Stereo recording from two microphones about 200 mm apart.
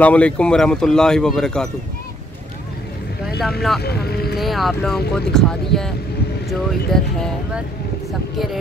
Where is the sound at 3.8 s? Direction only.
50° left (ahead or behind).